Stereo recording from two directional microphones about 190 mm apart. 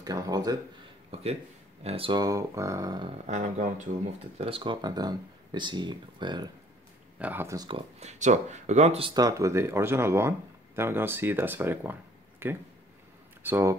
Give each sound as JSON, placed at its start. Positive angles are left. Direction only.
{"t": 0.0, "sound": "speech", "side_deg": -20}
{"t": 1.1, "sound": "speech", "side_deg": -30}
{"t": 3.3, "sound": "speech", "side_deg": -40}
{"t": 4.4, "sound": "speech", "side_deg": -30}
{"t": 7.2, "sound": "speech", "side_deg": -10}
{"t": 8.0, "sound": "speech", "side_deg": -35}
{"t": 9.1, "sound": "speech", "side_deg": -20}